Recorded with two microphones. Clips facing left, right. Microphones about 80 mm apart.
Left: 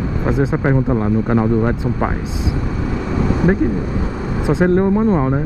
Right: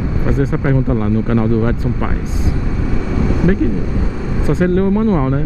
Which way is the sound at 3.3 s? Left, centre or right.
Left.